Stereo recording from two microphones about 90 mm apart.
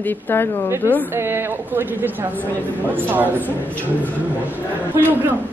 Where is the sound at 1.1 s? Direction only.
25° right (ahead or behind).